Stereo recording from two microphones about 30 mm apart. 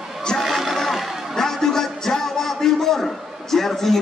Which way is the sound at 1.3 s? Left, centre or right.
Centre.